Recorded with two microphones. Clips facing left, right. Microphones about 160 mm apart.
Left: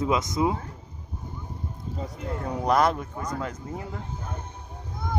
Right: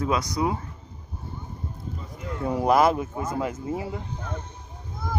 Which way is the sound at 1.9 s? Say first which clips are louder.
Left 5 dB; 90° left.